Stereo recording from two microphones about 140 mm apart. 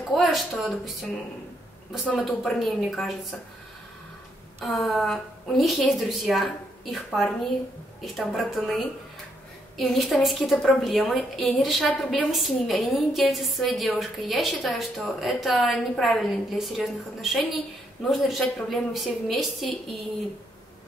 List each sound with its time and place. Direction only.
0.1 s a woman's voice: centre (ahead or behind)
2.0 s a woman's voice: centre (ahead or behind)
4.6 s a woman's voice: centre (ahead or behind)